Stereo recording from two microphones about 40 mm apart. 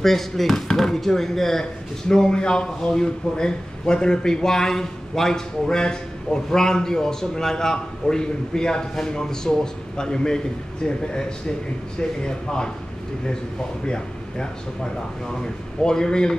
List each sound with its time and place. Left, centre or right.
0.0 s speech: centre
13.8 s speech: left